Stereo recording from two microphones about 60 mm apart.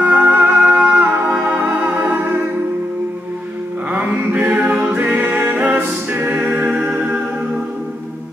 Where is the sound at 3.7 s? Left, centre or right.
Right; by 7.6 s centre.